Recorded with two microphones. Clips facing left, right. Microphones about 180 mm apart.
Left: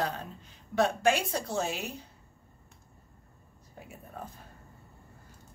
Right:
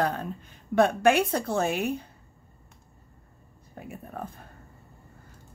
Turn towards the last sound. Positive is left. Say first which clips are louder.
# right 6 dB
turn(degrees=-55)  # may be behind; listen again after turning